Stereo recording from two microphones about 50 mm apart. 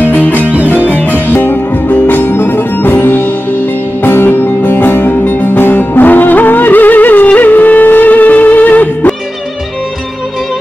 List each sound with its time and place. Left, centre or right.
0.0 s music: left